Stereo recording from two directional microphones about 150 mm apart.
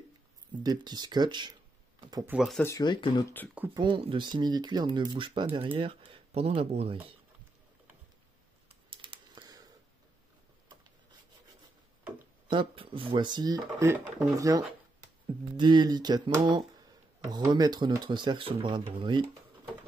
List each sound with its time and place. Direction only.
0.7 s speech: 30° right (ahead or behind)
2.2 s speech: centre (ahead or behind)
2.6 s speech: 25° left (ahead or behind)
3.7 s speech: 35° right (ahead or behind)
8.9 s typing: 35° right (ahead or behind)
12.4 s speech: 35° right (ahead or behind)
15.5 s speech: 30° right (ahead or behind)